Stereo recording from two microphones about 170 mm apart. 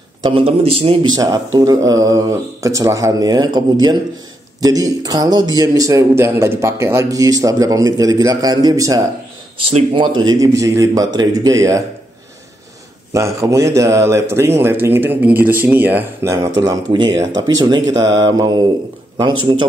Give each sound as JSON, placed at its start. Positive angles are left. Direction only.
{"t": 0.2, "sound": "a man's voice", "side_deg": -30}
{"t": 1.2, "sound": "a man's voice", "side_deg": -20}
{"t": 9.7, "sound": "a man's voice", "side_deg": -30}
{"t": 13.1, "sound": "speech", "side_deg": -20}
{"t": 16.6, "sound": "a man's voice", "side_deg": -25}